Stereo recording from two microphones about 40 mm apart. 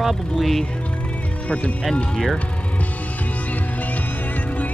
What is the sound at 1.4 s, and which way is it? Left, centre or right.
Speech, left.